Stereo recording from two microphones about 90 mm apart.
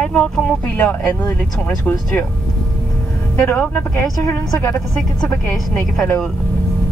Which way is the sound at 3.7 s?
25° left (ahead or behind).